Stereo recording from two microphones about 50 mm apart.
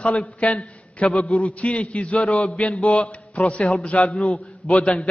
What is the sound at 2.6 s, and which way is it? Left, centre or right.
Speech, centre.